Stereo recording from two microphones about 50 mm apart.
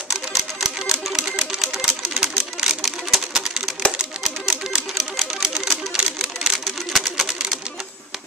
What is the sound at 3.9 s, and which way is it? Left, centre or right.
Typewriter, centre.